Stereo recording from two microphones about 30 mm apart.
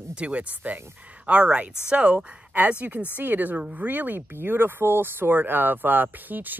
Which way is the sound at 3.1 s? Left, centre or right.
Right.